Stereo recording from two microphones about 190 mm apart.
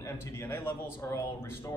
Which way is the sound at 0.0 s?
15° left (ahead or behind).